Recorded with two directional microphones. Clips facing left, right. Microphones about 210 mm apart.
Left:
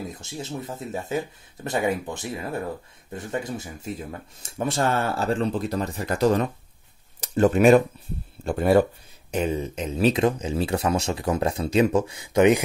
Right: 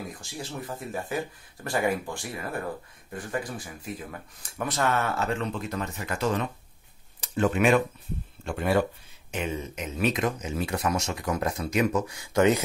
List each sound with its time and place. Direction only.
0.0 s speech: 25° left (ahead or behind)